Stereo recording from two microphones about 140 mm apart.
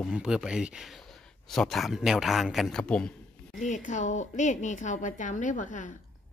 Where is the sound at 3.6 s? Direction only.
60° left (ahead or behind).